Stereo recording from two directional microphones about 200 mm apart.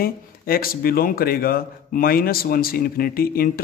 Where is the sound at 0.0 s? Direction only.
45° left (ahead or behind).